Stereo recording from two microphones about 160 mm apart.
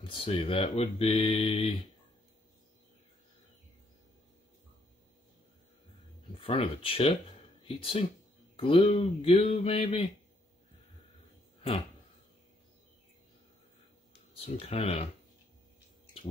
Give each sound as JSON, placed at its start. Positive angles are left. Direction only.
{"t": 0.0, "sound": "speech", "side_deg": 35}
{"t": 6.3, "sound": "speech", "side_deg": 35}
{"t": 14.3, "sound": "speech", "side_deg": 40}